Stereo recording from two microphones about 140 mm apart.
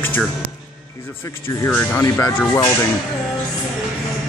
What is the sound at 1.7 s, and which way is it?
Speech, 15° left (ahead or behind).